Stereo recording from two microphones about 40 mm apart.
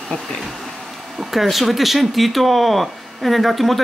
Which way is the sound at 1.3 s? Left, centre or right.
Centre.